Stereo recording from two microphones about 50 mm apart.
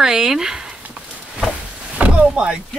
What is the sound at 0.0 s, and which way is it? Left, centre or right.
Speech, centre.